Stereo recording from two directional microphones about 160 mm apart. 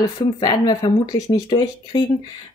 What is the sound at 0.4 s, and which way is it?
Speech, 25° left (ahead or behind).